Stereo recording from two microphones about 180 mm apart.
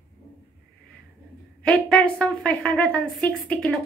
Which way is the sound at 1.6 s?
5° left (ahead or behind).